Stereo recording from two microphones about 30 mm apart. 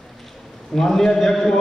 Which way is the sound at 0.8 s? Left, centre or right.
Centre.